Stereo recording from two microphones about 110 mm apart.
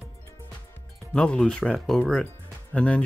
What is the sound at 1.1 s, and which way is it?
Speech, 10° left (ahead or behind).